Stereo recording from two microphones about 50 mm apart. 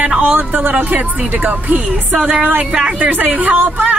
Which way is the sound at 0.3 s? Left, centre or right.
Right.